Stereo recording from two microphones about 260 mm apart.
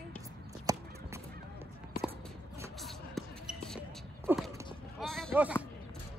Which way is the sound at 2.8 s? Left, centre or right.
Centre.